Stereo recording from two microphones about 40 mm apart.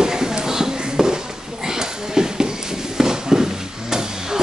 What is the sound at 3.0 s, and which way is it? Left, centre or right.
Horse, centre.